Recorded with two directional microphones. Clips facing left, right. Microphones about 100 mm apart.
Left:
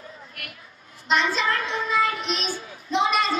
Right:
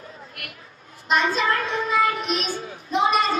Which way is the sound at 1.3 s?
35° right (ahead or behind).